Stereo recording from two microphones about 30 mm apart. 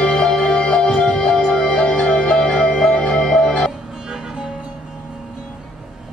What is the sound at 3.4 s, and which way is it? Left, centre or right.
Music, left.